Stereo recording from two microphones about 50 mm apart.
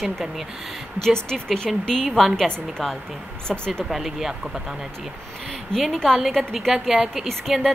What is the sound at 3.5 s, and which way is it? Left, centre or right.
Speech, centre.